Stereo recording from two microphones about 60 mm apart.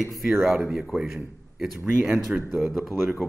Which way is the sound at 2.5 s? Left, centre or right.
Centre.